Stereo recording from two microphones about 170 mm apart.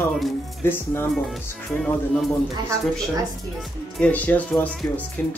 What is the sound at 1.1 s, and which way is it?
Speech, centre (ahead or behind).